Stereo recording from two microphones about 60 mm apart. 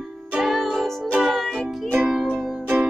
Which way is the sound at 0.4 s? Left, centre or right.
Centre.